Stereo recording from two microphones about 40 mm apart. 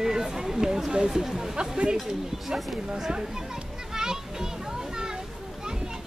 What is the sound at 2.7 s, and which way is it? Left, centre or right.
Speech, centre.